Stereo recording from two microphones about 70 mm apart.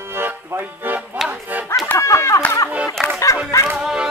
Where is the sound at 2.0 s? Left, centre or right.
Left.